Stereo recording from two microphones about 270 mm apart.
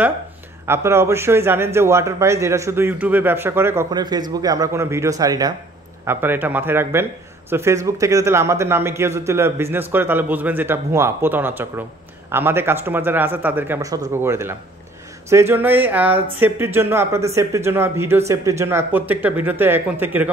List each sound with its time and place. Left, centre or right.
0.7 s speech: centre